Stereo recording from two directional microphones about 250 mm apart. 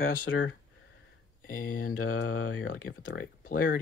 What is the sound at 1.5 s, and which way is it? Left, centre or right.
Speech, left.